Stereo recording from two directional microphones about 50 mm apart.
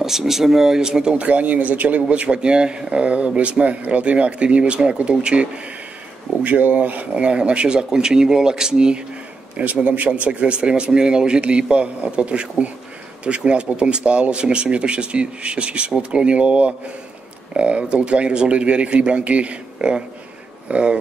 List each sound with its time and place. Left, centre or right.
0.0 s speech: centre
1.1 s speech: right
7.2 s speech: right
9.6 s speech: right